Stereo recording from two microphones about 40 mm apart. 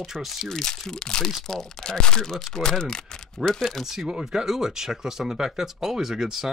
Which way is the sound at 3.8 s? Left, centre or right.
Centre.